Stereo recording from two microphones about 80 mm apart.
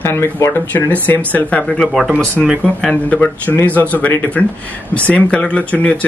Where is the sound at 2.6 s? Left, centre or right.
Centre.